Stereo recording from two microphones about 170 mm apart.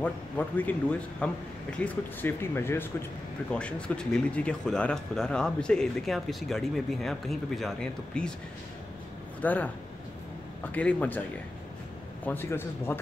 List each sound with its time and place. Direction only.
0.0 s speech: 10° left (ahead or behind)
9.4 s speech: 10° left (ahead or behind)
10.7 s speech: 10° left (ahead or behind)
12.3 s speech: 15° left (ahead or behind)